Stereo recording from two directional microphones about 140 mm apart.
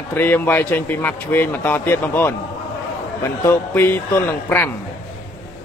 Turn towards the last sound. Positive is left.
turn(degrees=15)  # may be behind; listen again after turning